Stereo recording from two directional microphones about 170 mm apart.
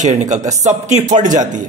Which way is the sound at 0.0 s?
45° right (ahead or behind).